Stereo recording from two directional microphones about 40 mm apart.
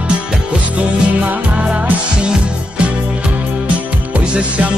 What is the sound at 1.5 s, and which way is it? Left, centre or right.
Music, right.